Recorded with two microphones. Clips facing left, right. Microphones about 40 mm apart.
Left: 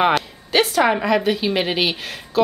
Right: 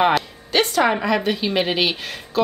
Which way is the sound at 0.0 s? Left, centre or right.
Centre.